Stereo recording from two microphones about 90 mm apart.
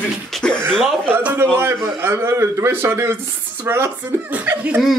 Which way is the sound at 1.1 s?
20° right (ahead or behind).